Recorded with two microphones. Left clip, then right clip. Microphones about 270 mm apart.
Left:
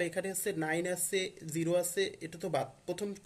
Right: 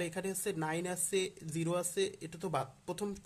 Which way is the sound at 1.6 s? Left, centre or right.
Right.